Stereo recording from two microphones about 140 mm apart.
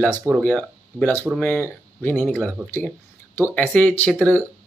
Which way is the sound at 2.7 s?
15° left (ahead or behind).